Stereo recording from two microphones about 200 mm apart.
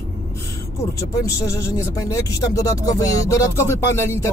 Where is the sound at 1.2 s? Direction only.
15° left (ahead or behind).